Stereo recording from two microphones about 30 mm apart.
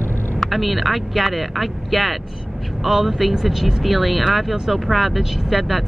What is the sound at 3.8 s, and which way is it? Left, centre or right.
Speech, centre.